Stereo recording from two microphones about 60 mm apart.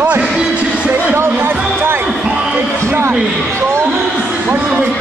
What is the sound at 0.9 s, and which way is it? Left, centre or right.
Speech, right.